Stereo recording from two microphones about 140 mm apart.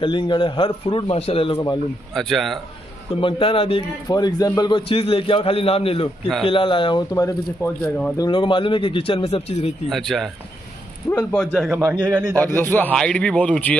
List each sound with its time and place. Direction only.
0.0 s a man's voice: 35° left (ahead or behind)
2.1 s a man's voice: centre (ahead or behind)
3.2 s a man's voice: 40° left (ahead or behind)
4.1 s a man's voice: 25° left (ahead or behind)
8.2 s a man's voice: 35° left (ahead or behind)
9.8 s a man's voice: centre (ahead or behind)
11.9 s a man's voice: 5° right (ahead or behind)
12.7 s speech: 10° left (ahead or behind)